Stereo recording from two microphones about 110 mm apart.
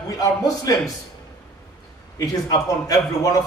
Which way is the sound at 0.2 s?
35° left (ahead or behind).